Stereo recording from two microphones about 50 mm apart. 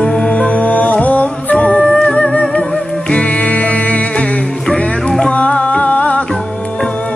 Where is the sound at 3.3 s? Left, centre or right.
Left.